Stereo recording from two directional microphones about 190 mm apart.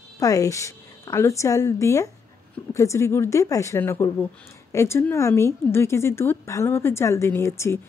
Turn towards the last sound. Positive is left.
turn(degrees=15)  # may be behind; listen again after turning